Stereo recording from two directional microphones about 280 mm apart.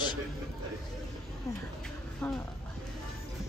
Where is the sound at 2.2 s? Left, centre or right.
Centre.